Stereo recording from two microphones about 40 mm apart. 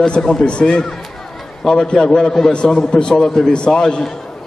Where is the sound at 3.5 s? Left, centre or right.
Left.